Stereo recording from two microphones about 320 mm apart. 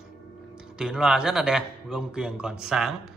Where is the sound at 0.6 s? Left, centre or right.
Centre.